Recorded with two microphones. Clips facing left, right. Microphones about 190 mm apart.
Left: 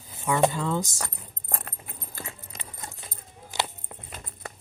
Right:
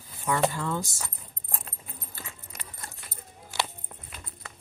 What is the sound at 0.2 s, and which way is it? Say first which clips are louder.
Speech: left 3 dB; 20° left (ahead or behind).